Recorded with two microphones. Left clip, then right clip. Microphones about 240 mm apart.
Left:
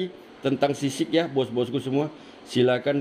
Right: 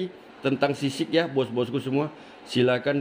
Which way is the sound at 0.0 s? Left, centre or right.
Centre.